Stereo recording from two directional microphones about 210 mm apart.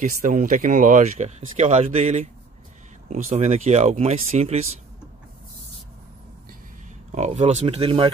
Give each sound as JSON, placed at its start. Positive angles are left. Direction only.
{"t": 0.0, "sound": "speech", "side_deg": -35}
{"t": 7.1, "sound": "speech", "side_deg": -30}